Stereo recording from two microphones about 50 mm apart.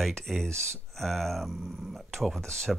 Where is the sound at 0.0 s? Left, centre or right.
Centre.